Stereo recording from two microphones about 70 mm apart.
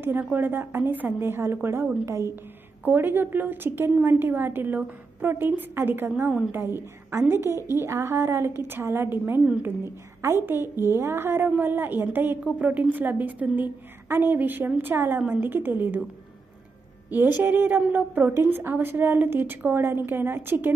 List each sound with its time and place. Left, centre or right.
0.2 s a woman's voice: right
2.8 s a woman's voice: right
17.4 s a woman's voice: right
18.3 s a woman's voice: right